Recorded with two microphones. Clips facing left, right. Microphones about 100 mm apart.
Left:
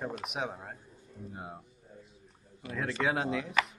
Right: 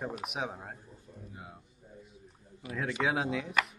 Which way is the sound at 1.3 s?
30° left (ahead or behind).